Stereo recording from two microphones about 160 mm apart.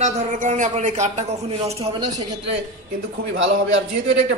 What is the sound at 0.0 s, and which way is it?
Speech, 50° right (ahead or behind).